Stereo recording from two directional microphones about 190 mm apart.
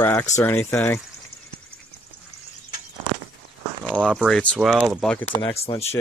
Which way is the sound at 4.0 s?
5° right (ahead or behind).